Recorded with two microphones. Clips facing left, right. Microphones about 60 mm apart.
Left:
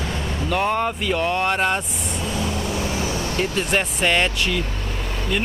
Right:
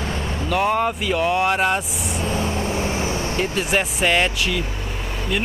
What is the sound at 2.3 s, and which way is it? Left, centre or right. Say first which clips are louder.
Vehicle: right 2 dB; right.